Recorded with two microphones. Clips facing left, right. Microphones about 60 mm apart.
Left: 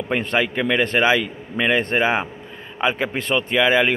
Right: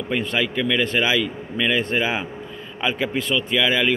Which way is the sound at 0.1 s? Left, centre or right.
Left.